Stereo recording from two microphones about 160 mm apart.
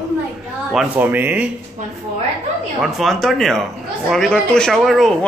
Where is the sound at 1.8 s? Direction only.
50° right (ahead or behind).